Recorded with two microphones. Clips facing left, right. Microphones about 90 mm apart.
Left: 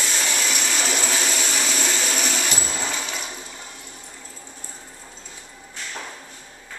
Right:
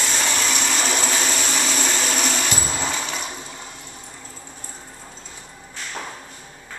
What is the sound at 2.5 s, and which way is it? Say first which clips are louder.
Toilet flush: right 2 dB; 15° right (ahead or behind).